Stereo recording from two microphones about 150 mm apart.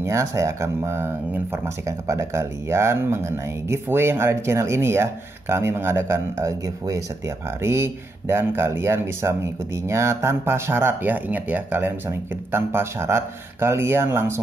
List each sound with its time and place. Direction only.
0.0 s speech: 20° right (ahead or behind)